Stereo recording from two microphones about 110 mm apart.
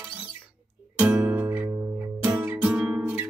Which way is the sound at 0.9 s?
15° right (ahead or behind).